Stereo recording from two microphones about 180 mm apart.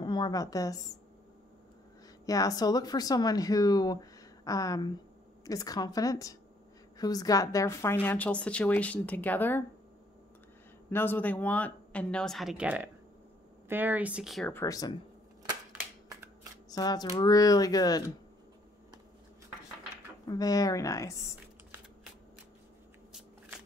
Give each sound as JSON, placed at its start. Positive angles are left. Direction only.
{"t": 0.0, "sound": "a woman's voice", "side_deg": 25}
{"t": 2.2, "sound": "a woman's voice", "side_deg": 20}
{"t": 10.9, "sound": "a woman's voice", "side_deg": 10}
{"t": 14.5, "sound": "speech", "side_deg": 15}
{"t": 15.7, "sound": "a sound", "side_deg": -15}
{"t": 16.7, "sound": "speech", "side_deg": 20}
{"t": 20.2, "sound": "speech", "side_deg": 20}